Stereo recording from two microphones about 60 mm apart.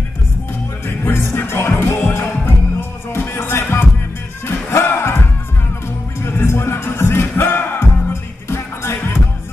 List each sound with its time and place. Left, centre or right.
0.8 s music: left